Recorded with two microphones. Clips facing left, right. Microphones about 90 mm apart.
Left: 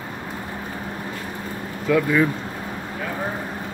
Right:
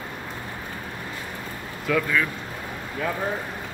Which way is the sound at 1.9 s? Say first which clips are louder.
Left 5 dB; 15° left (ahead or behind).